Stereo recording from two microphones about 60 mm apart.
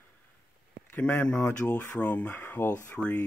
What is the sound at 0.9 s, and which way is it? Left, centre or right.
Speech, left.